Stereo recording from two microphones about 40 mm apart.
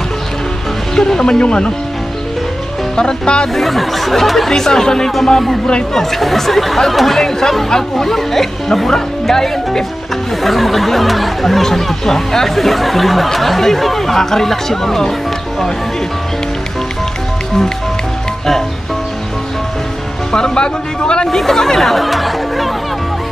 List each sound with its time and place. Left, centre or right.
0.9 s speech: centre
1.4 s speech: left
3.0 s speech: left
3.5 s speech: centre
20.2 s speech: centre
21.3 s chatter: centre